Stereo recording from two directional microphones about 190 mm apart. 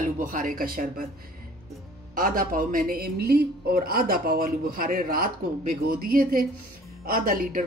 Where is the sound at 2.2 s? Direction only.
45° right (ahead or behind).